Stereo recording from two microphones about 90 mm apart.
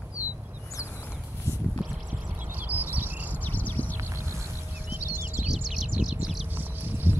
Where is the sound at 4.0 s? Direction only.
30° right (ahead or behind).